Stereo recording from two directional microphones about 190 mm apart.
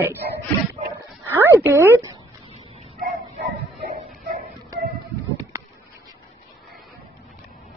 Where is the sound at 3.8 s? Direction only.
45° right (ahead or behind).